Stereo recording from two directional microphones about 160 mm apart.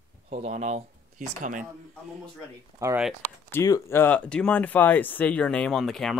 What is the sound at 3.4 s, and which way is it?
Speech, 20° left (ahead or behind).